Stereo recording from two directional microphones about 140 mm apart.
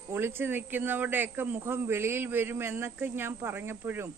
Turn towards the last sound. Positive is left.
turn(degrees=-15)  # may be behind; listen again after turning